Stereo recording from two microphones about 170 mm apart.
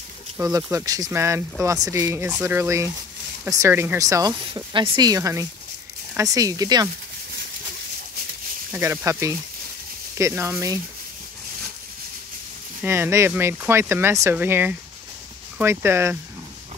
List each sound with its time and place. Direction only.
0.4 s speech: 20° right (ahead or behind)
8.7 s speech: 15° right (ahead or behind)
12.8 s speech: 15° right (ahead or behind)